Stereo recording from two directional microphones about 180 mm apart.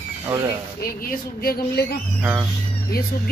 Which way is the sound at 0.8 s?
55° left (ahead or behind).